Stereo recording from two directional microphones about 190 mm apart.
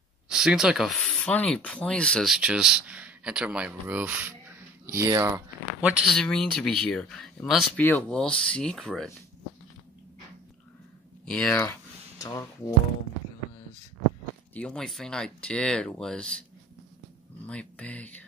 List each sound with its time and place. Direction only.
0.3 s speech: 5° right (ahead or behind)
5.8 s speech: 5° right (ahead or behind)
11.2 s speech: 5° left (ahead or behind)
12.2 s speech: 20° left (ahead or behind)
14.5 s speech: 5° left (ahead or behind)
17.5 s speech: 5° left (ahead or behind)